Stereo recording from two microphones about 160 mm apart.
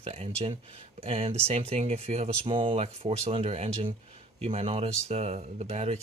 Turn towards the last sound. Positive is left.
turn(degrees=-45)  # may be behind; listen again after turning